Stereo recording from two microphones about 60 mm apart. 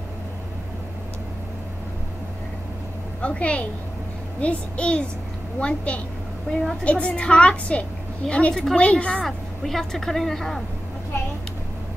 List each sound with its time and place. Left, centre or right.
3.2 s a woman's voice: left
9.2 s speech: centre